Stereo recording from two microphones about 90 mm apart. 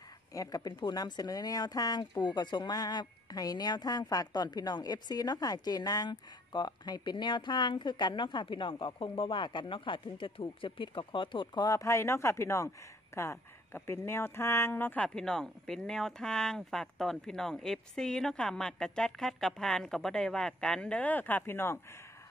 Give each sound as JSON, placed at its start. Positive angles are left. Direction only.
{"t": 0.3, "sound": "speech", "side_deg": 40}
{"t": 11.6, "sound": "speech", "side_deg": 35}
{"t": 15.0, "sound": "speech", "side_deg": 5}